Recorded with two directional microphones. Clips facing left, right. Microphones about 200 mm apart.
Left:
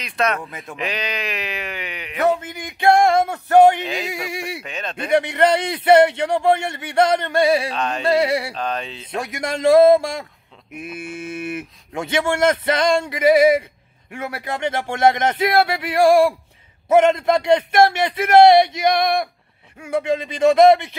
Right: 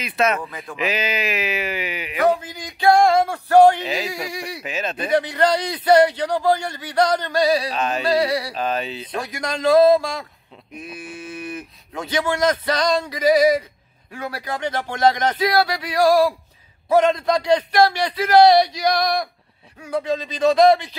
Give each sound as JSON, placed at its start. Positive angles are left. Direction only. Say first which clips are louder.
{"t": 0.0, "sound": "speech", "louder": "right 1 dB", "side_deg": -5}
{"t": 2.2, "sound": "a sound", "louder": "even", "side_deg": 25}
{"t": 3.8, "sound": "speech", "louder": "right 1 dB", "side_deg": -5}
{"t": 4.1, "sound": "a man's voice", "louder": "left 1 dB", "side_deg": 25}
{"t": 4.6, "sound": "speech", "louder": "right 3 dB", "side_deg": -5}
{"t": 5.1, "sound": "a man's voice", "louder": "left 2 dB", "side_deg": 25}
{"t": 7.7, "sound": "speech", "louder": "right 1 dB", "side_deg": -5}
{"t": 8.0, "sound": "a man's voice", "louder": "left 3 dB", "side_deg": 25}
{"t": 8.5, "sound": "speech", "louder": "right 2 dB", "side_deg": -5}
{"t": 9.0, "sound": "a man's voice", "louder": "left 1 dB", "side_deg": 25}
{"t": 20.3, "sound": "a man's voice", "louder": "left 2 dB", "side_deg": 25}